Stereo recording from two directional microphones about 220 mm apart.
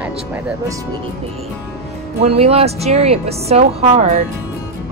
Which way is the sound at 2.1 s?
30° right (ahead or behind).